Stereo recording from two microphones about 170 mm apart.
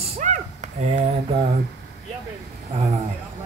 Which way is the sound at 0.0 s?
40° right (ahead or behind).